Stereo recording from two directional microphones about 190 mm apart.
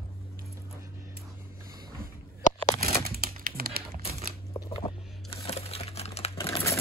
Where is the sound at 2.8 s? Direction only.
50° right (ahead or behind).